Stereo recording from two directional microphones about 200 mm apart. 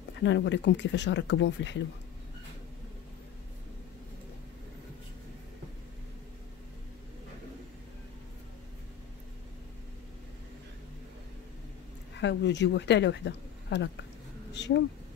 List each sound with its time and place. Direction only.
0.2 s speech: 65° left (ahead or behind)
12.2 s speech: 60° left (ahead or behind)